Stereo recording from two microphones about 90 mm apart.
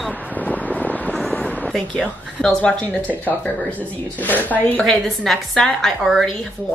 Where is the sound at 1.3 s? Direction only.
15° left (ahead or behind).